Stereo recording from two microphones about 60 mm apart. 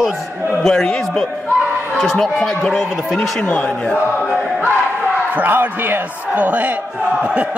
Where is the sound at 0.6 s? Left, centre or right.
Centre.